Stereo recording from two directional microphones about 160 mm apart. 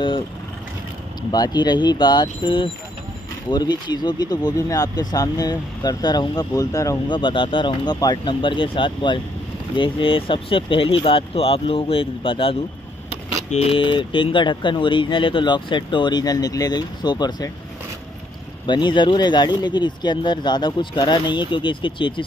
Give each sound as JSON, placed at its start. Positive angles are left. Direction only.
{"t": 1.3, "sound": "speech", "side_deg": 25}
{"t": 7.2, "sound": "speech", "side_deg": 30}
{"t": 18.7, "sound": "speech", "side_deg": 30}